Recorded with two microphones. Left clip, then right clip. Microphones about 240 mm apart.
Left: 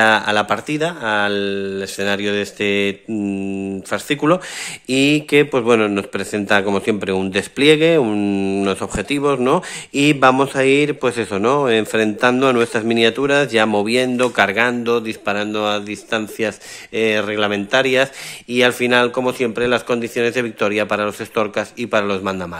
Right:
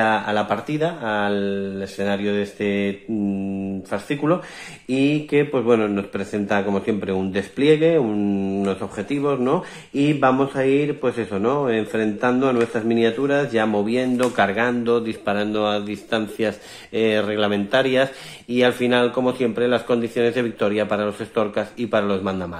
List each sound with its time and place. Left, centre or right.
0.0 s speech: left